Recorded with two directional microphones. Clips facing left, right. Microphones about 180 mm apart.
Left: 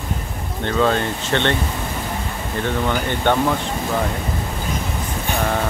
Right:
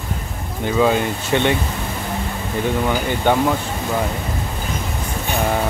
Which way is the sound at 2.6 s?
10° right (ahead or behind).